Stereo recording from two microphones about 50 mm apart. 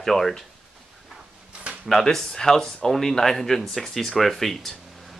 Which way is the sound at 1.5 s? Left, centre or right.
Right.